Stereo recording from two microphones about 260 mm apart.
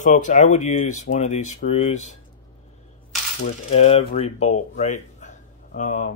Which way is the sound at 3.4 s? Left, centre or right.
Left.